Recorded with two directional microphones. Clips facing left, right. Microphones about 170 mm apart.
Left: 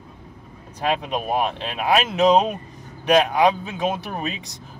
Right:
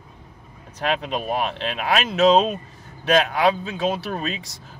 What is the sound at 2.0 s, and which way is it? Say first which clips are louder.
Speech: right 3 dB; 15° left (ahead or behind).